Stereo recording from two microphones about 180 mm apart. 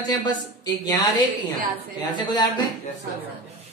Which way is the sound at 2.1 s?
25° left (ahead or behind).